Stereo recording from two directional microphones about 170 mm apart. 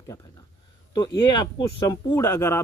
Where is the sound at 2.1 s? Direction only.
15° left (ahead or behind).